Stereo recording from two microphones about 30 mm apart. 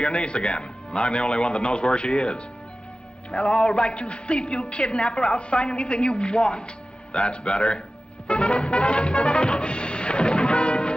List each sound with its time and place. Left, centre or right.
0.0 s a woman's voice: left
8.3 s music: left